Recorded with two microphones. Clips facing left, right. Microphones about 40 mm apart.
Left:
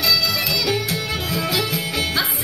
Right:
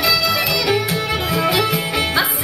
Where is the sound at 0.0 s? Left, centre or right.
Centre.